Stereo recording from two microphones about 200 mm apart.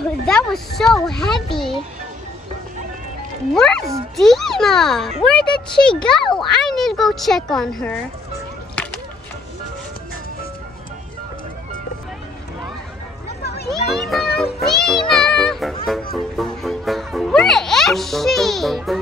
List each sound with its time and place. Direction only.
0.3 s a child's voice: 5° left (ahead or behind)
3.5 s a child's voice: 5° left (ahead or behind)
8.8 s a sound: 5° left (ahead or behind)
13.4 s children playing: 55° left (ahead or behind)
13.7 s children playing: centre (ahead or behind)
14.4 s music: centre (ahead or behind)